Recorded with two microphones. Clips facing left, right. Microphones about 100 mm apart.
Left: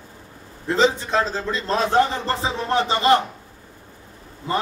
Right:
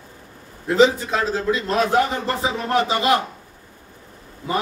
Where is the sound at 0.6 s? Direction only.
5° right (ahead or behind).